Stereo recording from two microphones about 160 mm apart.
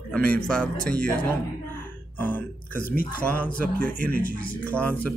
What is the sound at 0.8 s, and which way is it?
Speech, 5° left (ahead or behind).